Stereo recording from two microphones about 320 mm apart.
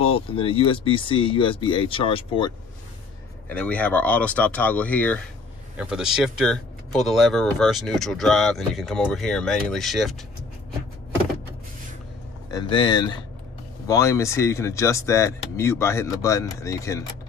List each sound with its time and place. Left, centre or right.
0.0 s speech: centre
3.4 s speech: centre
12.4 s speech: centre